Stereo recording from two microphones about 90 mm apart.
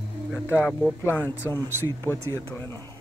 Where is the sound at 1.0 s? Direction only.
25° left (ahead or behind).